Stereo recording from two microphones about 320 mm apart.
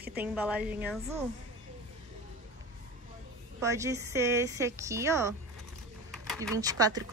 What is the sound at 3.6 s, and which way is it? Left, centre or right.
A woman's voice, centre.